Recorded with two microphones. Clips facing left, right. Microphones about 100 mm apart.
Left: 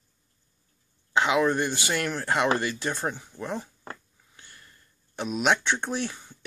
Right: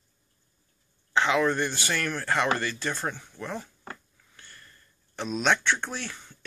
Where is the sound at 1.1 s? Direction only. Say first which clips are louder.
Left 1 dB; 15° left (ahead or behind).